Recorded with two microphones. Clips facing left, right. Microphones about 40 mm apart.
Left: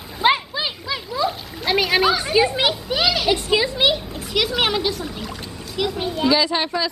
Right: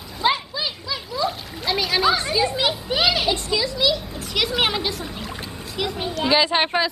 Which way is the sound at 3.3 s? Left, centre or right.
Left.